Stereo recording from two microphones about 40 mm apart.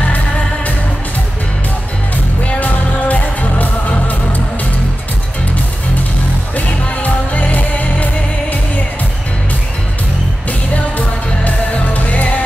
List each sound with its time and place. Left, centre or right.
2.4 s music: left
6.5 s music: left
11.0 s music: left